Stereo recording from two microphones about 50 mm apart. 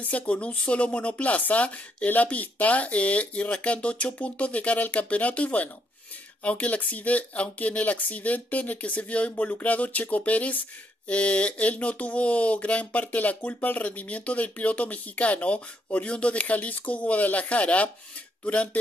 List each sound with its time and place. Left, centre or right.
0.0 s speech: left